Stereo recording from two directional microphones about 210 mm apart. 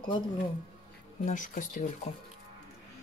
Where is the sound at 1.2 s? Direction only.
35° left (ahead or behind).